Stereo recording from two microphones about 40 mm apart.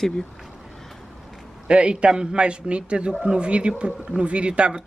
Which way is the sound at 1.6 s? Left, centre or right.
Right.